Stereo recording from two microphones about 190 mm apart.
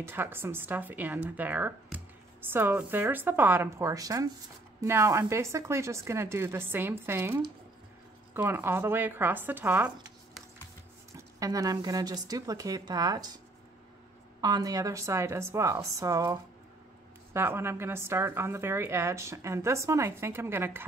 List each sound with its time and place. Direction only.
0.0 s a woman's voice: 10° right (ahead or behind)
11.3 s speech: 20° right (ahead or behind)
14.4 s a woman's voice: 20° right (ahead or behind)